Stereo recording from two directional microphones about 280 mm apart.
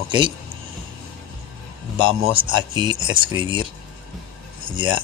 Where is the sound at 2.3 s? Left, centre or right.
Centre.